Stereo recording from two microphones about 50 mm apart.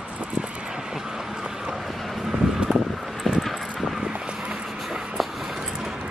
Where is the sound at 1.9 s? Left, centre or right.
Centre.